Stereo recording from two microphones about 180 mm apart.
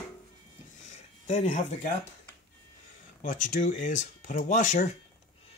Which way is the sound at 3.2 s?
45° left (ahead or behind).